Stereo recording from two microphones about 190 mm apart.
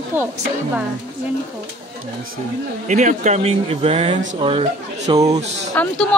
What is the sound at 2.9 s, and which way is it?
Speech, 40° right (ahead or behind).